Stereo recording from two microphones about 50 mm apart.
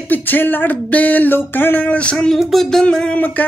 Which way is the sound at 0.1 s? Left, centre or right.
Left.